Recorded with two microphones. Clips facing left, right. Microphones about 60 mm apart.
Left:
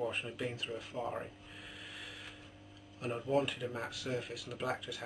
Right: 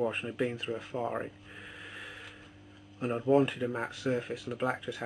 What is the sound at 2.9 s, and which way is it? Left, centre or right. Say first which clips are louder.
Speech: right 7 dB; right.